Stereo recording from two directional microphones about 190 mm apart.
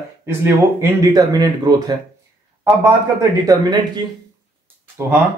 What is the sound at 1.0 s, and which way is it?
Speech, 20° right (ahead or behind).